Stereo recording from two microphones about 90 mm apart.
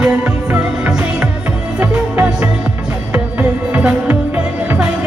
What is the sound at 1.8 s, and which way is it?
Music, 15° right (ahead or behind).